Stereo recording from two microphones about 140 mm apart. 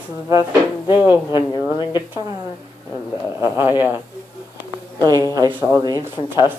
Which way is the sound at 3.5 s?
15° right (ahead or behind).